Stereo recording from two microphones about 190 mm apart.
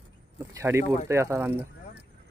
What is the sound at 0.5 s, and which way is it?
Speech, 15° right (ahead or behind).